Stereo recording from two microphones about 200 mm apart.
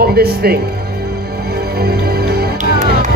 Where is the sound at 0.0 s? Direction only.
50° right (ahead or behind).